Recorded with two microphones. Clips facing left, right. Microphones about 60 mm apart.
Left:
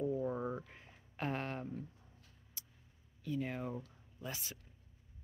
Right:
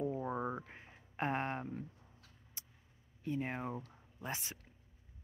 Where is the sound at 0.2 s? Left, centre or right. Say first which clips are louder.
Even; right.